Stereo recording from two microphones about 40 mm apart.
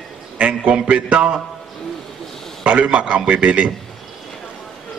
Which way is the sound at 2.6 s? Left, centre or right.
Right.